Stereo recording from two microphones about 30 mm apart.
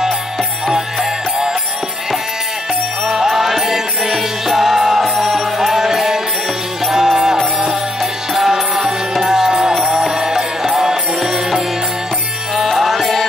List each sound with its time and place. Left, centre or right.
3.3 s music: centre
7.5 s music: centre
12.7 s music: centre